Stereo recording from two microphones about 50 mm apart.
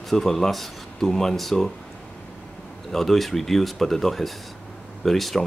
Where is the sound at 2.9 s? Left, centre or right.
Centre.